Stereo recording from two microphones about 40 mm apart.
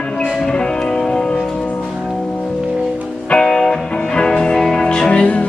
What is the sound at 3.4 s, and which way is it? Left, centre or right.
Music, centre.